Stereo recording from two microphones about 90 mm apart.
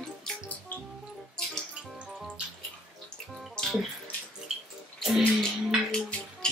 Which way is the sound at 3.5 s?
5° left (ahead or behind).